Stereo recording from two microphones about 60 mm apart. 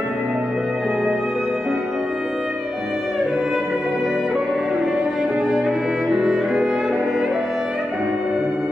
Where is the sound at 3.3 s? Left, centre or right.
Centre.